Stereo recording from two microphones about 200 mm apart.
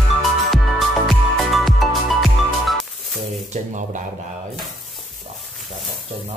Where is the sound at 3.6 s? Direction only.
35° right (ahead or behind).